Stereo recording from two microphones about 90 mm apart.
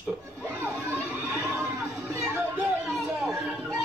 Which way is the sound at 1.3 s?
30° right (ahead or behind).